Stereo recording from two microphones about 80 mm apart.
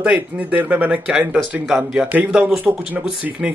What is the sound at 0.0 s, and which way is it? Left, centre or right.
Speech, centre.